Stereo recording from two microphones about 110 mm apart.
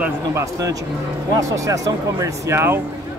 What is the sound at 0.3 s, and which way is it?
Speech, 30° right (ahead or behind).